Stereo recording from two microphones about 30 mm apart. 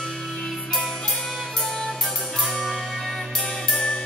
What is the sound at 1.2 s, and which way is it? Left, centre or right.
Music, left.